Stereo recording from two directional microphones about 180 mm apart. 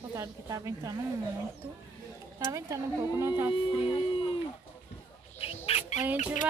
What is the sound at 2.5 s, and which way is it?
Speech, 15° right (ahead or behind).